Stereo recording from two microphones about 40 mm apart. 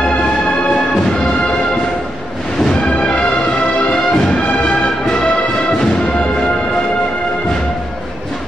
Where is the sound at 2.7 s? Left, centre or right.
Left.